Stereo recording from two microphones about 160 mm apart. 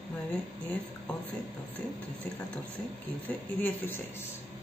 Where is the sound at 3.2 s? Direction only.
10° left (ahead or behind).